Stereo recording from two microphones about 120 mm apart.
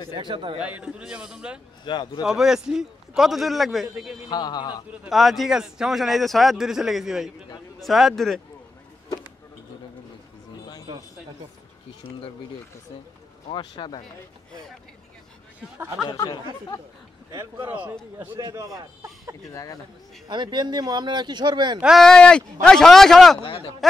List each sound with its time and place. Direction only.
0.2 s speech: 45° right (ahead or behind)
0.6 s a man's voice: 10° right (ahead or behind)
1.9 s a man's voice: 35° left (ahead or behind)
2.2 s a man's voice: 5° right (ahead or behind)
4.3 s a man's voice: 35° left (ahead or behind)
5.0 s a man's voice: centre (ahead or behind)
13.5 s a man's voice: 40° left (ahead or behind)
16.1 s speech: 25° left (ahead or behind)
17.3 s a man's voice: 25° right (ahead or behind)
18.4 s a man's voice: 25° right (ahead or behind)
19.5 s speech: 30° left (ahead or behind)
20.2 s speech: 40° right (ahead or behind)
21.8 s a man's voice: centre (ahead or behind)
23.4 s speech: 50° left (ahead or behind)